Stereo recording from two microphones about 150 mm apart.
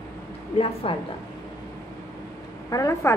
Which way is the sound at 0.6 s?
40° left (ahead or behind).